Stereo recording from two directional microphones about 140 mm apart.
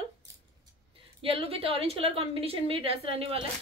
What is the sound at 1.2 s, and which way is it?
A woman's voice, 40° right (ahead or behind).